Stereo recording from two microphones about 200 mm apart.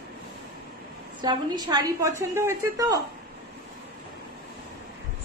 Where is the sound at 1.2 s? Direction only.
20° right (ahead or behind).